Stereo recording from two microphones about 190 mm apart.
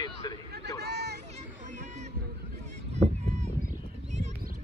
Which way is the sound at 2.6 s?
35° right (ahead or behind).